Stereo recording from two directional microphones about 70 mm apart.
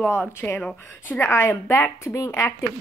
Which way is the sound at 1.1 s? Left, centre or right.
Left.